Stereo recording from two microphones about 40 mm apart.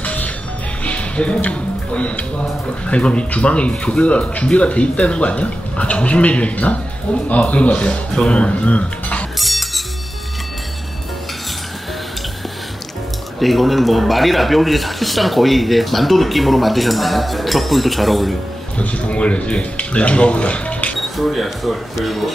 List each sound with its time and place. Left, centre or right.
0.0 s music: left
2.9 s speech: left
9.4 s music: centre
13.4 s speech: centre
18.8 s speech: left
21.2 s speech: centre